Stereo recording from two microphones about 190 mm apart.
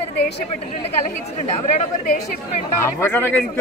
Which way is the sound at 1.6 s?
40° left (ahead or behind).